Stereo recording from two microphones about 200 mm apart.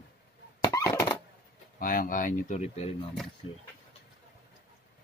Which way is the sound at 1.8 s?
45° left (ahead or behind).